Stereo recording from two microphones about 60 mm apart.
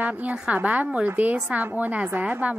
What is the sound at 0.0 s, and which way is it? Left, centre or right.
A woman's voice, right.